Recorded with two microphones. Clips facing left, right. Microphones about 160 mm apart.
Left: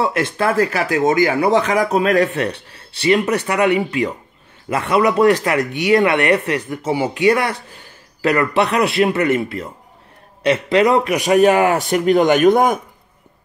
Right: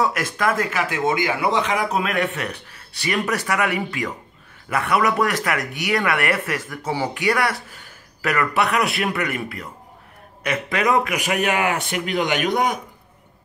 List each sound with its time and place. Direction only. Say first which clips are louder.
0.0 s speech: left 3 dB; 30° left (ahead or behind); by 12.8 s 50° left (ahead or behind)